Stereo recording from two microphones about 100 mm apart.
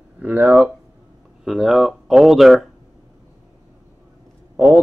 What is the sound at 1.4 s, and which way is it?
Speech, centre (ahead or behind).